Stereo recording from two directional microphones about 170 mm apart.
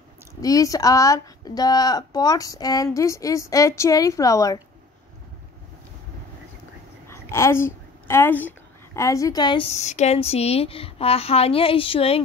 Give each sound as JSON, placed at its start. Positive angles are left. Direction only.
{"t": 0.4, "sound": "a woman's voice", "side_deg": 20}
{"t": 7.1, "sound": "a woman's voice", "side_deg": 15}
{"t": 9.7, "sound": "speech", "side_deg": 40}